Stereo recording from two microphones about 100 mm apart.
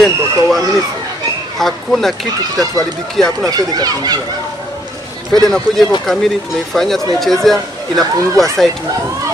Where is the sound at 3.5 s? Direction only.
40° right (ahead or behind).